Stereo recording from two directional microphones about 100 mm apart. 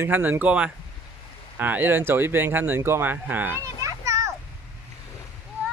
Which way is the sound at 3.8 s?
35° right (ahead or behind).